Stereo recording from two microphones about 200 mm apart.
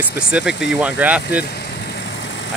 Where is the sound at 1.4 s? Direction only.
55° left (ahead or behind).